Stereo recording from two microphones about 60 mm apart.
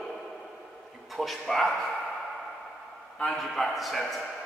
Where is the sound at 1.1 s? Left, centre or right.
Centre.